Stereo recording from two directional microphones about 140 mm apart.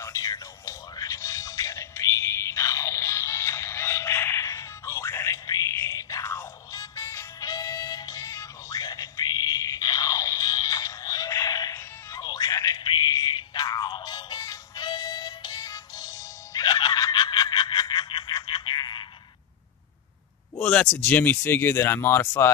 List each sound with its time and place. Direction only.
0.0 s music: 25° left (ahead or behind)
20.5 s speech: 5° left (ahead or behind)